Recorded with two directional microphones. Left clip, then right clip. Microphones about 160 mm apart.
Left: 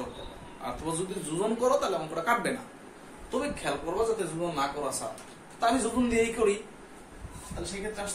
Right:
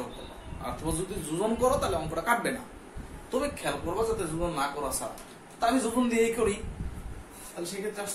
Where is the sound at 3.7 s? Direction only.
20° right (ahead or behind).